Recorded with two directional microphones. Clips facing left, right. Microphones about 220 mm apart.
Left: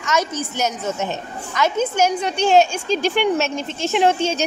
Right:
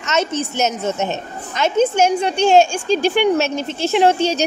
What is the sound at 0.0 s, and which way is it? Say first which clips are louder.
A woman's voice: right 2 dB; 25° right (ahead or behind).